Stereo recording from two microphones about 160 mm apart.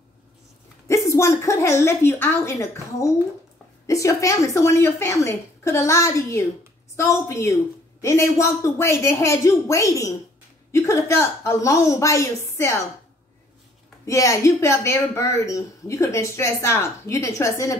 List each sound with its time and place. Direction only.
0.8 s a woman's voice: 20° left (ahead or behind)
14.0 s a woman's voice: 20° left (ahead or behind)